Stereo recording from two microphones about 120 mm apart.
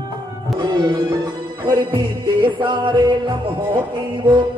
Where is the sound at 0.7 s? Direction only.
35° right (ahead or behind).